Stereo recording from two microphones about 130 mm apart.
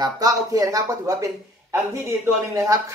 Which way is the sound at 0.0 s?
25° right (ahead or behind).